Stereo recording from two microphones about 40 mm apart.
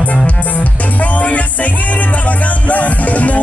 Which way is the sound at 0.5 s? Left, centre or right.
Left.